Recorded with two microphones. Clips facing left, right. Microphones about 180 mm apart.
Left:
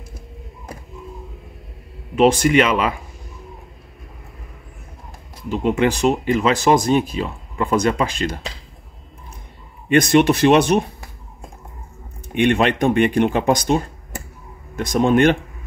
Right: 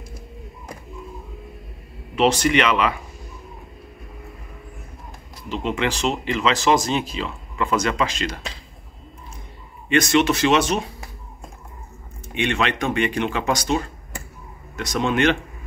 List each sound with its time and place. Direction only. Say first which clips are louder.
2.1 s speech: left 4 dB; 50° left (ahead or behind)
5.6 s speech: left 6 dB; 50° left (ahead or behind)
9.8 s speech: left 4 dB; 55° left (ahead or behind)
12.4 s speech: left 6 dB; 50° left (ahead or behind)
14.8 s speech: left 6 dB; 50° left (ahead or behind)